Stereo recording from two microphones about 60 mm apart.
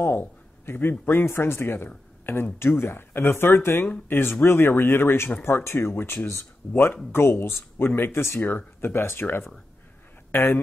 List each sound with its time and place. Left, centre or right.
0.0 s speech: left